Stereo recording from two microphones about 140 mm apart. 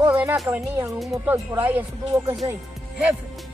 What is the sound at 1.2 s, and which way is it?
Speech, 15° right (ahead or behind).